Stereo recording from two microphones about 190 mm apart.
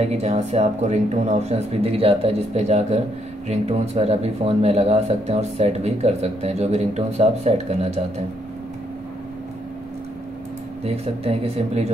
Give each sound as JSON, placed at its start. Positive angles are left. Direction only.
{"t": 0.0, "sound": "speech", "side_deg": -35}
{"t": 10.8, "sound": "speech", "side_deg": -35}